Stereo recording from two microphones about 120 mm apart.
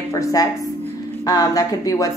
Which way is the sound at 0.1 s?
30° left (ahead or behind).